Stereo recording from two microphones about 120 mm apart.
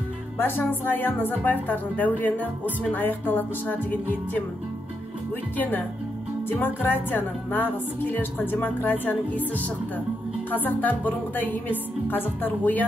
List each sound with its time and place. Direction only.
0.4 s a woman's voice: 15° left (ahead or behind)
5.6 s a woman's voice: 15° left (ahead or behind)